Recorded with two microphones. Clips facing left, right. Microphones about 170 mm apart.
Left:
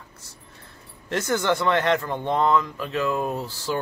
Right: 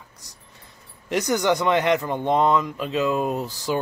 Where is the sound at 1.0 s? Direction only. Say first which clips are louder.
Right 2 dB; 15° right (ahead or behind).